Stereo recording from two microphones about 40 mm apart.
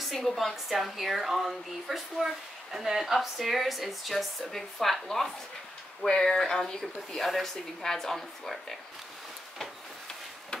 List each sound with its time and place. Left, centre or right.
0.0 s a woman's voice: centre
6.0 s speech: centre
7.2 s a woman's voice: centre